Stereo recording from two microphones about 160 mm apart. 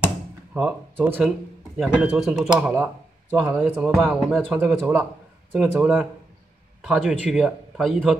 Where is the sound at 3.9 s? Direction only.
Centre (ahead or behind).